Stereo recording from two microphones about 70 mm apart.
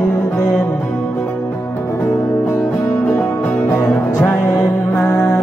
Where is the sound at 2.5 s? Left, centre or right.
Left.